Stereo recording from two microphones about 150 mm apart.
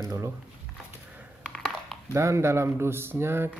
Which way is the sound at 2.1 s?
20° right (ahead or behind).